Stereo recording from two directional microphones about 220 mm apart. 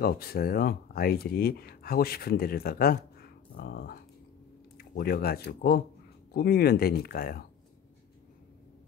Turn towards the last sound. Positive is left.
turn(degrees=45)  # may be behind; listen again after turning